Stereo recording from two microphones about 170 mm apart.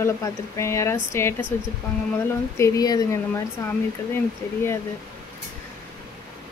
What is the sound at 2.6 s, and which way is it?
Speech, 20° left (ahead or behind).